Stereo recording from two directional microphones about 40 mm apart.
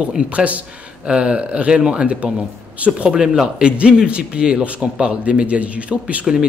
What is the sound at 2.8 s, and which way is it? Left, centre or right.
A man's voice, right.